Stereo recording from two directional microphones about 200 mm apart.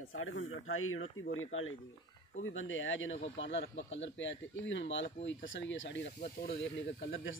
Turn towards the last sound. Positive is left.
turn(degrees=75)  # may be behind; listen again after turning